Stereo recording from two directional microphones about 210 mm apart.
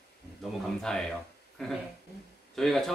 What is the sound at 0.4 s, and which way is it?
Speech, 5° left (ahead or behind).